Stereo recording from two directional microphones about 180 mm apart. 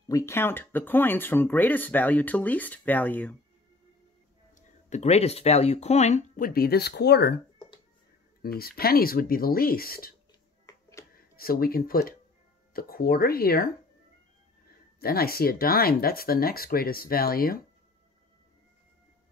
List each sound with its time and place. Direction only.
0.1 s speech: 15° left (ahead or behind)
4.6 s speech: 40° left (ahead or behind); by 7.3 s 65° left (ahead or behind)
8.4 s speech: 55° left (ahead or behind)
10.7 s music: 15° left (ahead or behind)
11.1 s speech: 55° left (ahead or behind)
15.0 s speech: 60° left (ahead or behind)